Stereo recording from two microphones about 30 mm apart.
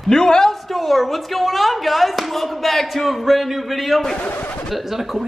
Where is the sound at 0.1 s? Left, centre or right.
Centre.